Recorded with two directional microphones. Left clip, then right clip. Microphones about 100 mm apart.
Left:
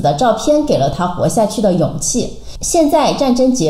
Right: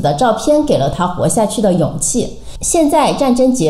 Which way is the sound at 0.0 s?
20° right (ahead or behind).